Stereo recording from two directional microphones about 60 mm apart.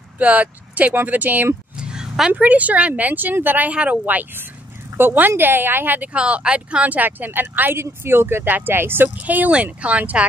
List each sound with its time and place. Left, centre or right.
0.2 s speech: right
1.8 s a sound: centre
2.3 s speech: right
6.1 s speech: centre